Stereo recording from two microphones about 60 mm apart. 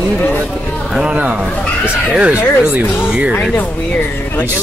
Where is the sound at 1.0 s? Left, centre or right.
Right.